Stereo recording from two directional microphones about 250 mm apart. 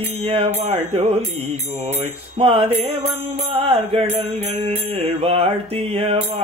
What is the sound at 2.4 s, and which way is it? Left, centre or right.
Music, right.